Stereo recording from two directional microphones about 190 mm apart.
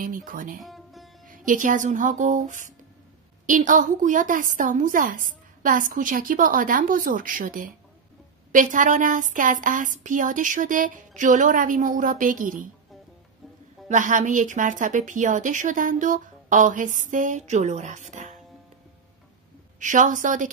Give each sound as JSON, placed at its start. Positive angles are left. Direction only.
{"t": 0.0, "sound": "a woman's voice", "side_deg": -45}
{"t": 0.6, "sound": "music", "side_deg": 0}
{"t": 1.3, "sound": "a woman's voice", "side_deg": -45}
{"t": 13.8, "sound": "a woman's voice", "side_deg": -40}
{"t": 19.8, "sound": "a woman's voice", "side_deg": -40}